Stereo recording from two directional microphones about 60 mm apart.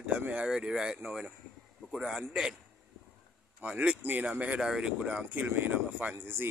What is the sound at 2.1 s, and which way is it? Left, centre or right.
Speech, centre.